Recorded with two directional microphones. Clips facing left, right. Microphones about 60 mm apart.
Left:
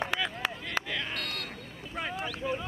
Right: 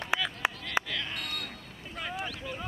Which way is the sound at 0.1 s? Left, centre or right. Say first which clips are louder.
Right 4 dB; centre.